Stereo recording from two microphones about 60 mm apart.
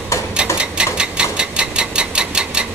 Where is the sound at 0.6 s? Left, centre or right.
Centre.